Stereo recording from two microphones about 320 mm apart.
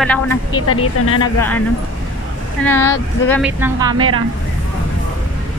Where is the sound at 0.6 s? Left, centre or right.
Left.